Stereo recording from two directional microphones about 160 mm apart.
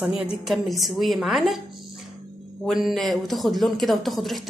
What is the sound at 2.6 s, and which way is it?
A woman's voice, centre (ahead or behind).